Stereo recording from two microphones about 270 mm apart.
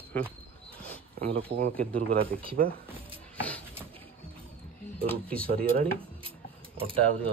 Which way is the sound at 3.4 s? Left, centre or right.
Centre.